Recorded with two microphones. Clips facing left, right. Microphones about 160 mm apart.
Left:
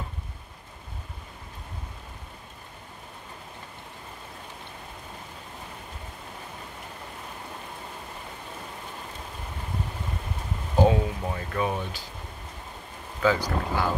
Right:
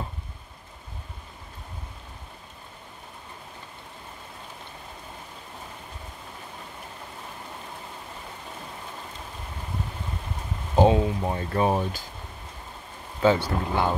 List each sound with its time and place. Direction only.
10.8 s speech: 30° right (ahead or behind)
13.2 s speech: 25° right (ahead or behind)